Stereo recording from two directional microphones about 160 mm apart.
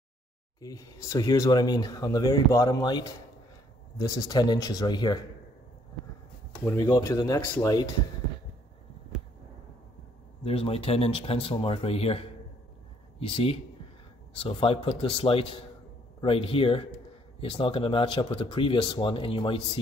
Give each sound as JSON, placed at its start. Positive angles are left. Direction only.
{"t": 0.6, "sound": "speech", "side_deg": 20}
{"t": 6.6, "sound": "speech", "side_deg": 15}
{"t": 10.4, "sound": "speech", "side_deg": 40}
{"t": 13.3, "sound": "speech", "side_deg": 35}